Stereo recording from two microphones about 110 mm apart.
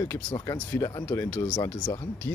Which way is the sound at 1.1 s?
20° left (ahead or behind).